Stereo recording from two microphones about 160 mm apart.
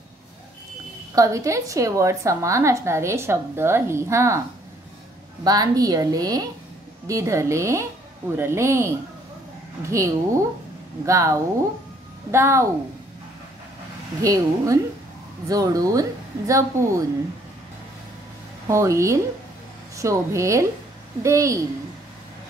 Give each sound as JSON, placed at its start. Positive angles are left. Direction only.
{"t": 1.1, "sound": "a woman's voice", "side_deg": -20}
{"t": 5.4, "sound": "a woman's voice", "side_deg": -25}
{"t": 14.2, "sound": "speech", "side_deg": -20}
{"t": 18.7, "sound": "speech", "side_deg": -20}